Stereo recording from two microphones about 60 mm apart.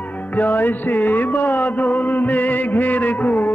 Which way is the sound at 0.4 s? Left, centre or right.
Left.